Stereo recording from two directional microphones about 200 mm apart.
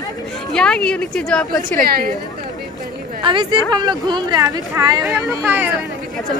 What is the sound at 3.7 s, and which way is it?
Speech, 20° right (ahead or behind).